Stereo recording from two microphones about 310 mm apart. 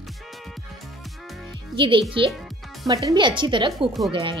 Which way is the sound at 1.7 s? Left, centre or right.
Centre.